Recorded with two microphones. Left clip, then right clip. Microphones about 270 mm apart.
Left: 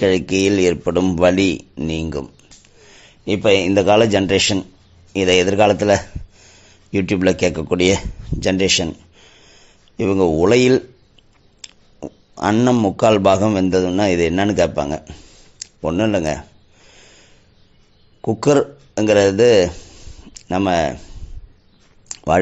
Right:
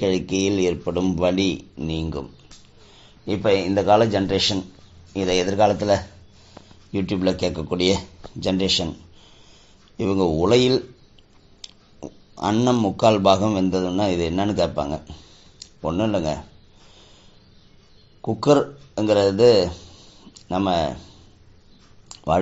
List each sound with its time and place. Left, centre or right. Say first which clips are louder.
0.0 s a man's voice: left 6 dB; left
3.3 s a man's voice: left 5 dB; left
12.0 s a man's voice: left 5 dB; left
18.2 s a man's voice: left 3 dB; left
22.0 s a sound: left 5 dB; left